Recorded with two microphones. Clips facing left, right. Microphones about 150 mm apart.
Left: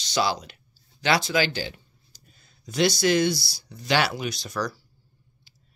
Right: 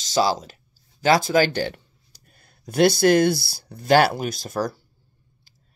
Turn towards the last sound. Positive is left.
turn(degrees=-50)  # may be behind; listen again after turning